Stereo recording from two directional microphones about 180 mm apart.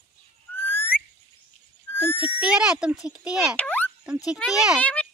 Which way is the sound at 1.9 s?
10° left (ahead or behind).